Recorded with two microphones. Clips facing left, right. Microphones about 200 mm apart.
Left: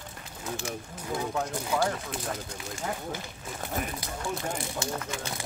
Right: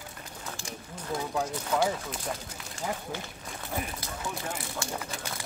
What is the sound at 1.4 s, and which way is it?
Speech, 10° left (ahead or behind).